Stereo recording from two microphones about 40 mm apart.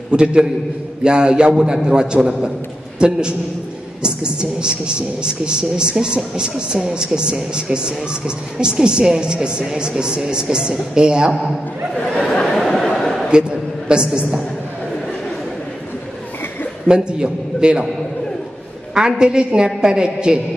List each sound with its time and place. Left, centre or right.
0.1 s a woman's voice: right
12.1 s a sound: left; by 13.3 s centre
13.3 s a woman's voice: right
16.8 s a woman's voice: right
18.9 s a woman's voice: right